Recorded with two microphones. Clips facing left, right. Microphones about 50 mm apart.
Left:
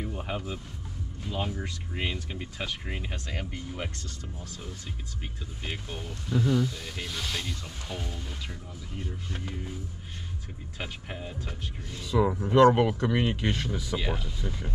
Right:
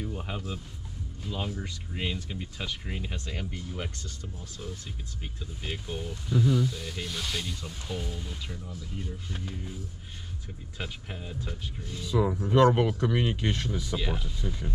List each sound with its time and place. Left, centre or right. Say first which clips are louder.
1.3 s speech: left 2 dB; left
5.6 s speech: right 2 dB; left
6.5 s speech: left 1 dB; centre
10.8 s speech: left 1 dB; left
14.2 s speech: even; left